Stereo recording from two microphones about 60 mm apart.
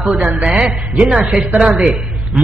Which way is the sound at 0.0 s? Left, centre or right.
Centre.